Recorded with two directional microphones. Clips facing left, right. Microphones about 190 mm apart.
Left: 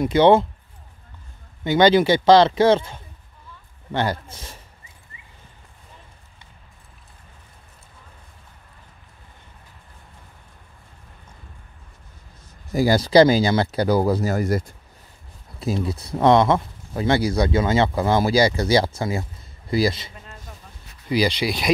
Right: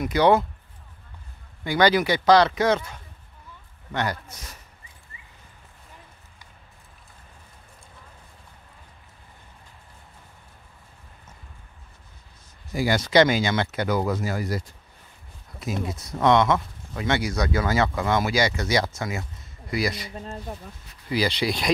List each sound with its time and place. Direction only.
0.0 s speech: 25° left (ahead or behind)
1.6 s speech: 25° left (ahead or behind)
12.7 s speech: 35° left (ahead or behind)
15.6 s speech: 30° left (ahead or behind)
20.2 s speech: 40° right (ahead or behind)
21.1 s speech: 15° left (ahead or behind)